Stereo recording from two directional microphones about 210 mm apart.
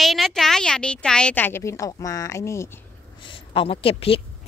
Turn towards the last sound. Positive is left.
turn(degrees=25)  # may be behind; listen again after turning